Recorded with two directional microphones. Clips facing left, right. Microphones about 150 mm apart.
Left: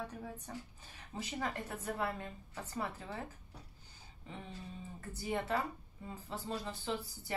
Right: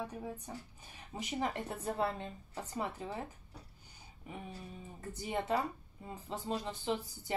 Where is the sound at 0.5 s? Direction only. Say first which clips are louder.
Even; 15° right (ahead or behind).